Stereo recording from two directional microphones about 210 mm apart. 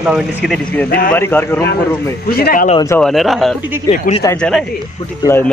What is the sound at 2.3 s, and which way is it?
Speech, 45° left (ahead or behind).